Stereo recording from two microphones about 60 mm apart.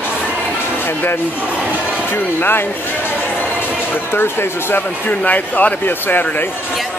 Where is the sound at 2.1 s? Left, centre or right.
Left.